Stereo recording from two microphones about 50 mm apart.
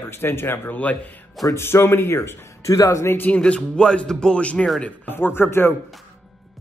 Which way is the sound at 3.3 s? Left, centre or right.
Left.